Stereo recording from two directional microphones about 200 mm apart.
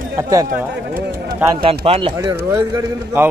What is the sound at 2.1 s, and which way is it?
A man's voice, 15° right (ahead or behind).